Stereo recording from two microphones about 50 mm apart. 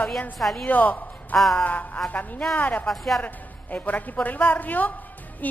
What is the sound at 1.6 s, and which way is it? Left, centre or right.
A woman's voice, left.